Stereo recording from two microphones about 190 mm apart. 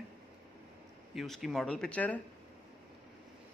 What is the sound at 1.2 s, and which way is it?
A man's voice, centre (ahead or behind).